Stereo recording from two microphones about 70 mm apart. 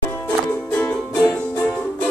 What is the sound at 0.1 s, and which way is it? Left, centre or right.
Music, left.